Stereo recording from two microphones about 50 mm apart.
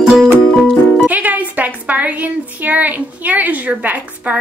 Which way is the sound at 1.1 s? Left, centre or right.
Right.